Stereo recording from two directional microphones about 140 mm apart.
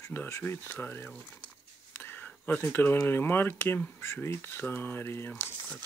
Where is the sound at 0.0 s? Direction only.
20° left (ahead or behind).